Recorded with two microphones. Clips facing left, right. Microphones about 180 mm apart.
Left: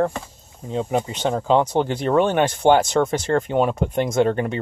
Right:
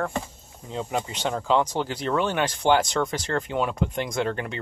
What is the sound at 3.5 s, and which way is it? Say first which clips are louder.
Speech: left 6 dB; 45° left (ahead or behind).